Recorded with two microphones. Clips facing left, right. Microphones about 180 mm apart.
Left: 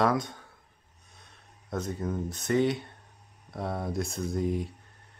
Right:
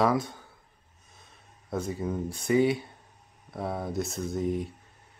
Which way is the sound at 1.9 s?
10° right (ahead or behind).